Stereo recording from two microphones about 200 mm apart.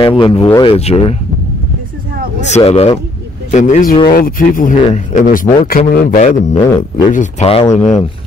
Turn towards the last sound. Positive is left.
turn(degrees=30)  # may be behind; listen again after turning